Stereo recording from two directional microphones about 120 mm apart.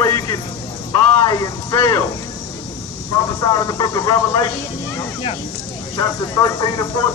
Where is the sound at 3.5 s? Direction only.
30° left (ahead or behind).